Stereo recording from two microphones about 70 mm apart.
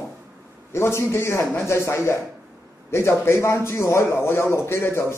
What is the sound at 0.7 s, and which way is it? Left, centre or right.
A man's voice, left.